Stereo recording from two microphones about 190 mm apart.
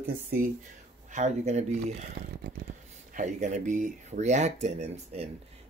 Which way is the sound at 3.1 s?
40° right (ahead or behind).